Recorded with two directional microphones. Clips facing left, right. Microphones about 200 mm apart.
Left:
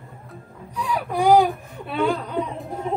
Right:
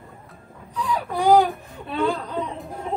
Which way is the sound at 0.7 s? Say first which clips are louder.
Left 1 dB; 10° left (ahead or behind).